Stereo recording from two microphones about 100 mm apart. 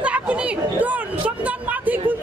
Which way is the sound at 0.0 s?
10° right (ahead or behind).